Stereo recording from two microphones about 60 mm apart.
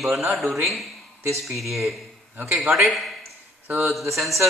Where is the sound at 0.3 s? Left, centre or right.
Centre.